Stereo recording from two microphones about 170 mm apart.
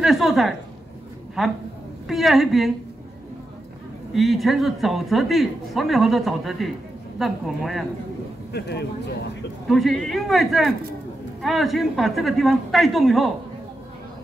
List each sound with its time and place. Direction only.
0.0 s a woman's voice: centre (ahead or behind)
4.1 s speech: centre (ahead or behind)
8.5 s speech: 80° left
9.7 s speech: centre (ahead or behind)